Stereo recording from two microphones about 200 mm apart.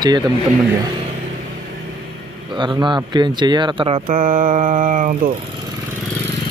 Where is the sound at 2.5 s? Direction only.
25° right (ahead or behind).